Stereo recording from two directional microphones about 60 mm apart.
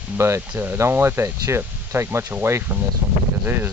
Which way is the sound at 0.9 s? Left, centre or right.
Right.